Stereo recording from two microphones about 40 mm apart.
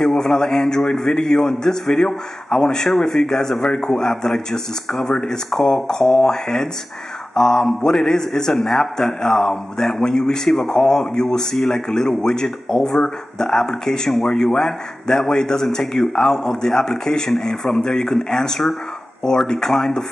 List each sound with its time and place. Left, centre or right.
0.1 s a man's voice: centre